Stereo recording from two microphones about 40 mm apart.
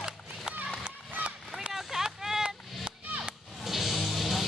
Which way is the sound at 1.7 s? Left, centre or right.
Centre.